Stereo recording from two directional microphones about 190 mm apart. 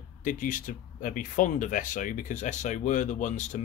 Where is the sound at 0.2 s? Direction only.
45° left (ahead or behind).